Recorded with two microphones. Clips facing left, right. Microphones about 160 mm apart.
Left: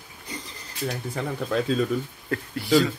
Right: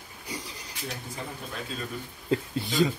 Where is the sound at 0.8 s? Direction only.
75° left (ahead or behind).